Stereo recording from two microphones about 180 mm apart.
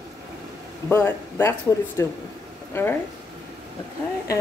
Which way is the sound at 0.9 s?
15° left (ahead or behind).